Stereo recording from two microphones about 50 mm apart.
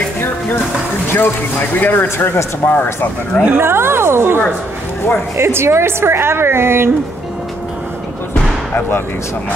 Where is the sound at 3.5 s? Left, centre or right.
Right.